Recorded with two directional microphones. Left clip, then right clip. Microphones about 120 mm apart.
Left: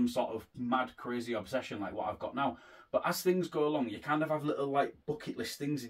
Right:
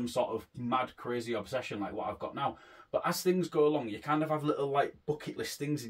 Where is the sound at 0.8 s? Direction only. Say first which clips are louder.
Right 1 dB; 30° right (ahead or behind).